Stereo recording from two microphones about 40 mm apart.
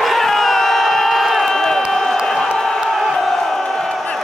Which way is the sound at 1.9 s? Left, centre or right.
Centre.